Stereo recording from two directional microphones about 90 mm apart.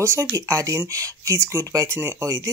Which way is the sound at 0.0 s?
35° right (ahead or behind).